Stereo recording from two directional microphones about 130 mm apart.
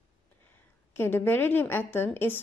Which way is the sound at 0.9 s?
15° left (ahead or behind).